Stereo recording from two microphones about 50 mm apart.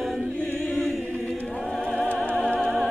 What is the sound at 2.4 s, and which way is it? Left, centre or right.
Music, left.